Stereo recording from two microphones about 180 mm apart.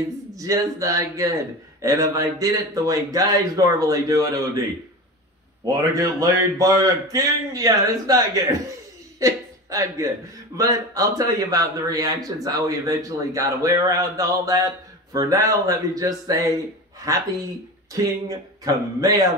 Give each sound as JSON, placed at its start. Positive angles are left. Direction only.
{"t": 0.3, "sound": "a man's voice", "side_deg": -20}
{"t": 5.9, "sound": "a man's voice", "side_deg": -20}